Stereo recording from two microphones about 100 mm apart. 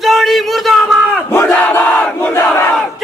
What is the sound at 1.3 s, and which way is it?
Crowd, 20° left (ahead or behind).